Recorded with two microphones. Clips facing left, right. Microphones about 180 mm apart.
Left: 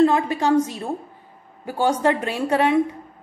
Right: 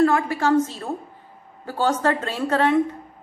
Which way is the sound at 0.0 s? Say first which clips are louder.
Left 1 dB; 20° left (ahead or behind).